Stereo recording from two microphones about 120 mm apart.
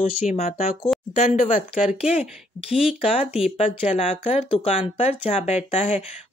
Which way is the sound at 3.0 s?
55° left (ahead or behind).